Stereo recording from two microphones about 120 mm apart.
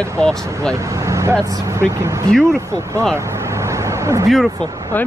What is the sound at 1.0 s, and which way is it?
Vehicle, 25° right (ahead or behind).